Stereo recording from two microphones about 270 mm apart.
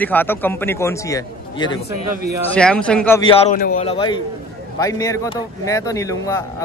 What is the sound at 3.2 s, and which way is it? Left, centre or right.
A man's voice, left.